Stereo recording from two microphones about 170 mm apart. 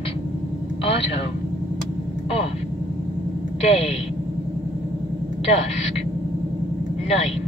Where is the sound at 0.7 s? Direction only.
35° left (ahead or behind).